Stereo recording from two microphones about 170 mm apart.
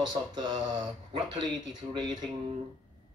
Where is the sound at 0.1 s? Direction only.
25° right (ahead or behind).